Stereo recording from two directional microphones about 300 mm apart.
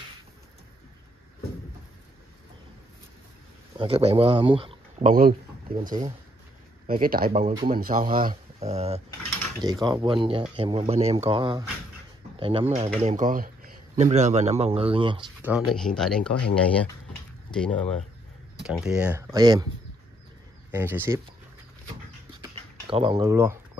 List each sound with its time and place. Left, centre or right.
3.7 s speech: centre
5.1 s speech: right
15.5 s speech: centre
20.7 s speech: centre
22.4 s a sound: centre